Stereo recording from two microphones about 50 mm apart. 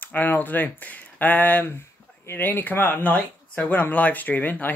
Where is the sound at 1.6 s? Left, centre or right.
Left.